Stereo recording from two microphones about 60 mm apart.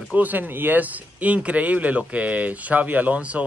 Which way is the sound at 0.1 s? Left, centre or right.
Right.